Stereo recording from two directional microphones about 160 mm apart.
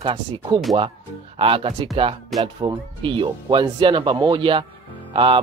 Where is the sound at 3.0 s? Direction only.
30° right (ahead or behind).